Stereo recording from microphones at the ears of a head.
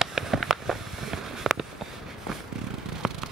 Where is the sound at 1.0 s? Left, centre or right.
Right.